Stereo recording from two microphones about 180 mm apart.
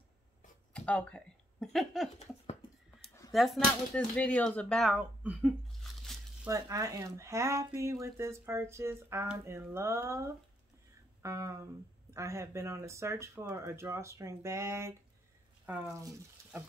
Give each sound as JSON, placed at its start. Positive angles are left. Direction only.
{"t": 0.7, "sound": "speech", "side_deg": 5}
{"t": 3.3, "sound": "speech", "side_deg": 0}
{"t": 6.4, "sound": "speech", "side_deg": -20}